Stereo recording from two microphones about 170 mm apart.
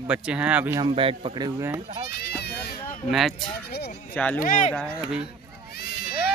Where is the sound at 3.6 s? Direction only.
70° left (ahead or behind).